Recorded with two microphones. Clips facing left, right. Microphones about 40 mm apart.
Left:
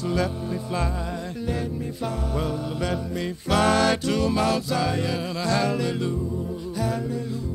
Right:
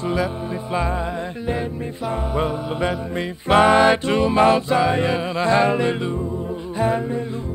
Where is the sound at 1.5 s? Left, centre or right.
Right.